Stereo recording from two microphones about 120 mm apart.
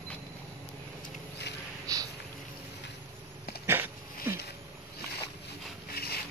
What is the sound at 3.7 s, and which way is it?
Dog, 20° right (ahead or behind).